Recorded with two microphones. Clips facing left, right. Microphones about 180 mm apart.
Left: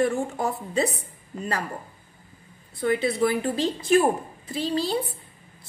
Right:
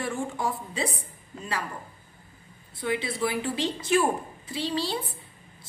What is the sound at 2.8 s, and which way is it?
Speech, 45° left (ahead or behind).